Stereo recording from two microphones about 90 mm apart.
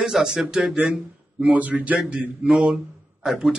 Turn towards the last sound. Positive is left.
turn(degrees=-5)  # may be behind; listen again after turning